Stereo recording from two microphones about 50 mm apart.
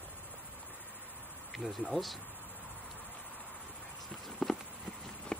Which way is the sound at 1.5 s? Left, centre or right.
Centre.